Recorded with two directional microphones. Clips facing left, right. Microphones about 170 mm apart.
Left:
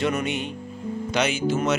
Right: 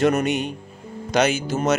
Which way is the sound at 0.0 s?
45° right (ahead or behind).